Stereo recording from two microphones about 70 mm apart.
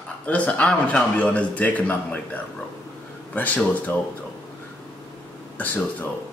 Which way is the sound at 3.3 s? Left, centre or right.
Left.